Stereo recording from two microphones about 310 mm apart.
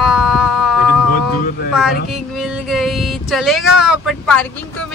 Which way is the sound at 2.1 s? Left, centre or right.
Centre.